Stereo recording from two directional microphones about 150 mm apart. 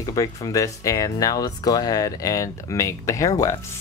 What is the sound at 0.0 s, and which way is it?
Speech, 25° left (ahead or behind).